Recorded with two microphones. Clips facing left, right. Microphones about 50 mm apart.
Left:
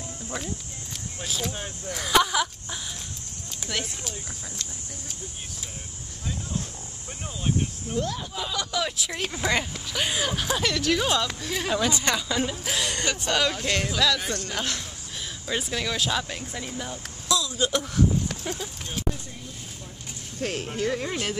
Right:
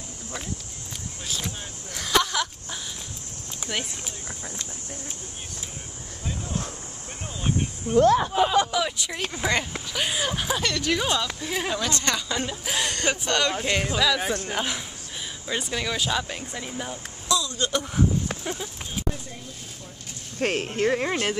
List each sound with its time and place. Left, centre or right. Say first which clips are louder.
1.2 s speech: left 3 dB; centre
3.7 s speech: right 1 dB; centre
7.9 s speech: right 13 dB; right
8.3 s speech: right 10 dB; right
8.7 s speech: right 2 dB; centre
11.7 s speech: left 5 dB; centre
12.3 s speech: left 1 dB; centre
17.3 s a sound: even; centre
18.4 s speech: right 1 dB; centre
20.3 s speech: right 4 dB; right